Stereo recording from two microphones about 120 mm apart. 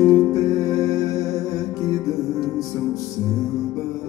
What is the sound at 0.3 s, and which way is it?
Music, 30° left (ahead or behind).